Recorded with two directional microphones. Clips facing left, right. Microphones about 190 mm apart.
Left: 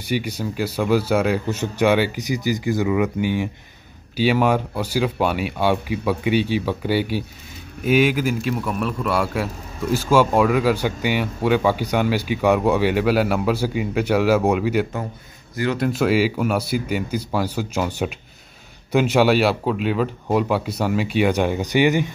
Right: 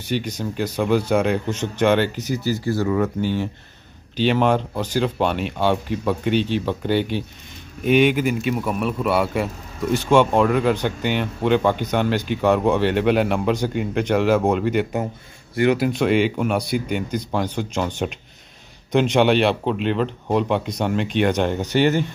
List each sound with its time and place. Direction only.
0.0 s a man's voice: 10° left (ahead or behind)
15.5 s speech: 20° right (ahead or behind)
15.8 s a man's voice: centre (ahead or behind)